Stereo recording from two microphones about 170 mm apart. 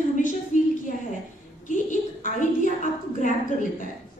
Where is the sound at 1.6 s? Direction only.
50° left (ahead or behind).